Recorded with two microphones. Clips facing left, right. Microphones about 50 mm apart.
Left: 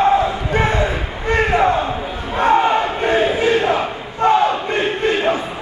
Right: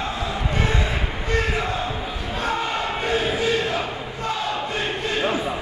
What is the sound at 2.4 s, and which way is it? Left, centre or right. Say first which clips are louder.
Crowd: left 11 dB; left.